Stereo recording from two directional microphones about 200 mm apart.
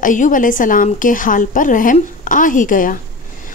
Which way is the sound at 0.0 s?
40° left (ahead or behind).